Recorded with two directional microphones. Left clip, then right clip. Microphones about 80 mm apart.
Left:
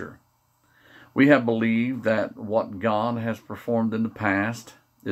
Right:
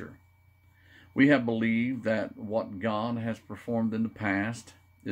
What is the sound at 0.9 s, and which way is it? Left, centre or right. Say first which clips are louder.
Speech: left 5 dB; centre.